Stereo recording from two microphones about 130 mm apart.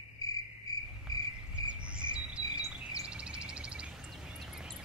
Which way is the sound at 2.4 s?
25° left (ahead or behind).